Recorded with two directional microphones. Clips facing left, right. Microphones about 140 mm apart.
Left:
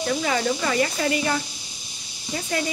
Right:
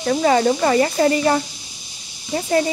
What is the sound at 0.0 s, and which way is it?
Speech, 40° right (ahead or behind).